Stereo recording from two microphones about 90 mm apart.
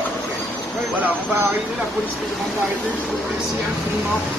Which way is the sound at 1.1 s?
20° right (ahead or behind).